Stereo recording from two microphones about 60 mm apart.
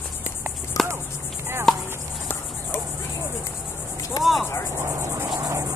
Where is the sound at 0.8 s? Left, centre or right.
Left.